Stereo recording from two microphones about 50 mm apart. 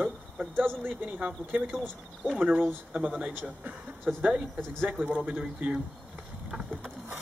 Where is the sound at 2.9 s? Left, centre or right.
Right.